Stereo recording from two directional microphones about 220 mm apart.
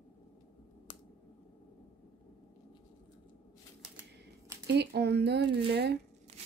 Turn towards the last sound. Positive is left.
turn(degrees=-50)  # may be behind; listen again after turning